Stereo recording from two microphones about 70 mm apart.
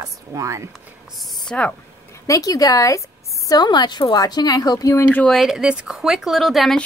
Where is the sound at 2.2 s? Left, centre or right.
Left.